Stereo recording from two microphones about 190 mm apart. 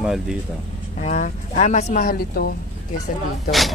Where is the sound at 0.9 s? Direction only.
40° left (ahead or behind).